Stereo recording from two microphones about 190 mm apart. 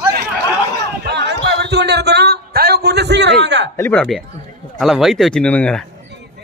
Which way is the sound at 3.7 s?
10° left (ahead or behind).